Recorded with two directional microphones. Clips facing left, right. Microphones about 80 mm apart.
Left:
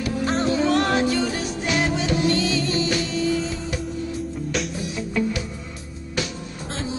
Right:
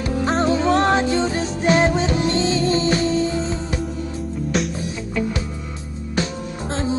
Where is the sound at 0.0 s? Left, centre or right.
Right.